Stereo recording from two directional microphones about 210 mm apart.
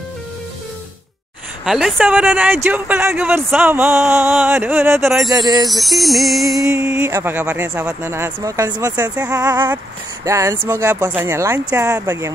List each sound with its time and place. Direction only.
1.6 s speech: centre (ahead or behind)
5.0 s music: centre (ahead or behind)
5.3 s a sound: 20° right (ahead or behind)
5.7 s music: centre (ahead or behind)
6.6 s speech: 5° right (ahead or behind)